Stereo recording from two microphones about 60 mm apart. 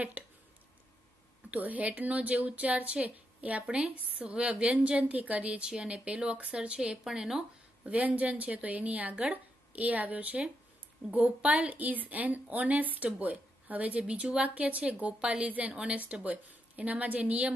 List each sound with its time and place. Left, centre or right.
0.2 s a sound: right
1.5 s a woman's voice: right
5.7 s speech: centre
7.1 s speech: centre
7.8 s a woman's voice: right